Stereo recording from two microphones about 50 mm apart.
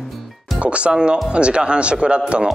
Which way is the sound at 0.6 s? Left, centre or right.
Right.